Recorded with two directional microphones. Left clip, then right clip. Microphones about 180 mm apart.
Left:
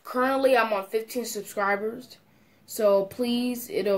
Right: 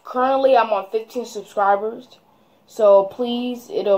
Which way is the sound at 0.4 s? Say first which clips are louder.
Right 6 dB; 30° right (ahead or behind).